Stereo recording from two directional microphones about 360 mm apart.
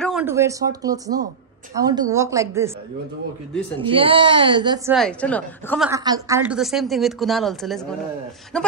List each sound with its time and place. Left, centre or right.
0.0 s a woman's voice: centre
3.8 s a woman's voice: centre
5.9 s speech: centre